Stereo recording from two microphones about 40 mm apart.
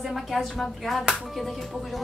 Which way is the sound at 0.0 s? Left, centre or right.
Centre.